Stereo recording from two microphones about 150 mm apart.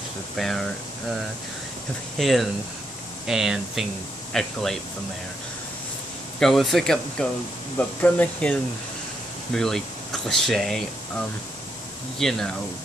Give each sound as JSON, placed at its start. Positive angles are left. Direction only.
{"t": 0.4, "sound": "speech", "side_deg": 0}
{"t": 2.1, "sound": "speech", "side_deg": 0}
{"t": 6.4, "sound": "speech", "side_deg": 0}